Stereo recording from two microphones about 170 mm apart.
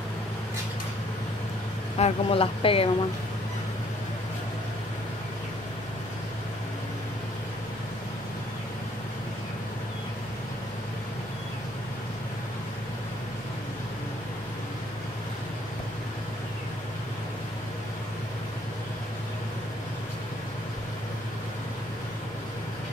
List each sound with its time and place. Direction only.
2.0 s speech: 35° left (ahead or behind)